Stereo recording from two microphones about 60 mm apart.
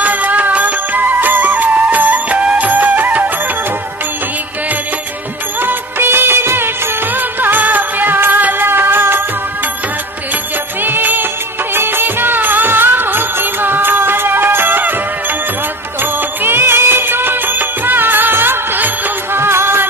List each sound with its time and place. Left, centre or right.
0.0 s music: right
5.6 s music of bollywood: right
7.2 s music: right
10.8 s music: right
16.0 s music: right